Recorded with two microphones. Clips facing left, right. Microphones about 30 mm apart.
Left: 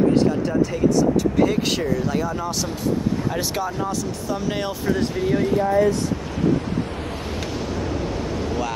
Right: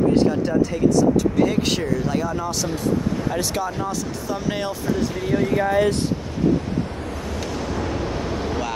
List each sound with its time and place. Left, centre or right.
0.1 s speech: centre
5.6 s speech: right